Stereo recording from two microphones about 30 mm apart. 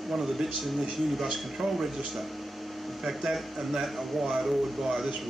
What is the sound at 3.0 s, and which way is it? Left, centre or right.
Speech, centre.